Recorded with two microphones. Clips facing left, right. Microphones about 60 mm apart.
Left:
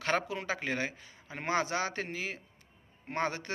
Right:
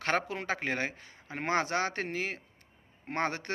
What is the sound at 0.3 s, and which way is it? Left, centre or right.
A man's voice, right.